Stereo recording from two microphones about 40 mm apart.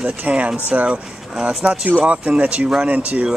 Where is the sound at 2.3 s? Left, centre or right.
Right.